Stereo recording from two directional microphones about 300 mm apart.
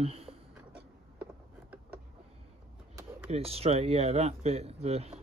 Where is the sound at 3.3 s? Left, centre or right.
Centre.